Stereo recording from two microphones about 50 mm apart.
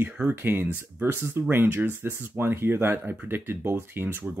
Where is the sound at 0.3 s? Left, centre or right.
Right.